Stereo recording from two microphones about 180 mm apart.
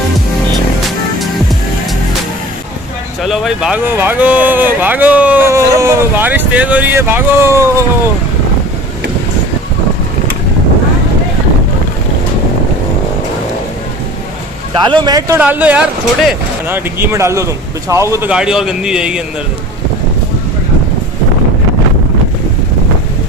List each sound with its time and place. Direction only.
3.2 s speech: centre (ahead or behind)
14.9 s speech: 25° right (ahead or behind)
15.3 s speech: 10° right (ahead or behind)
18.3 s a man's voice: 5° right (ahead or behind)